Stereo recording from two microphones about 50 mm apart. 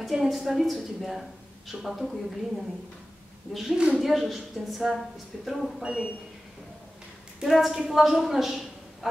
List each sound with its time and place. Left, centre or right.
0.0 s a woman's voice: centre
3.7 s a man's voice: centre
4.0 s a woman's voice: centre
5.8 s a man's voice: centre
7.4 s a woman's voice: centre